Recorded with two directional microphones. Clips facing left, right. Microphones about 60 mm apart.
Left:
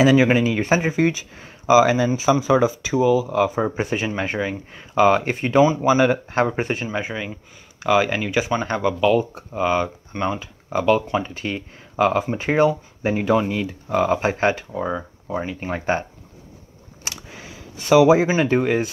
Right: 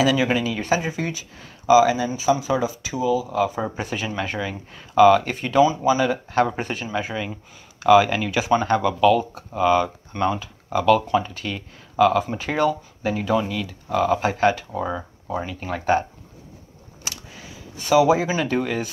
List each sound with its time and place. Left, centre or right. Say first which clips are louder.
0.0 s speech: left 4 dB; left
0.8 s speech: left 7 dB; left
2.0 s speech: left 3 dB; left
3.3 s speech: left 2 dB; left
3.6 s speech: left 4 dB; left
6.3 s speech: left 1 dB; left
14.8 s speech: left 1 dB; centre
15.4 s speech: right 1 dB; left
17.8 s speech: left 3 dB; left